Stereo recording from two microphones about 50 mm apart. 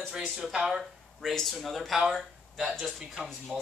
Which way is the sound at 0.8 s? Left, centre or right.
Centre.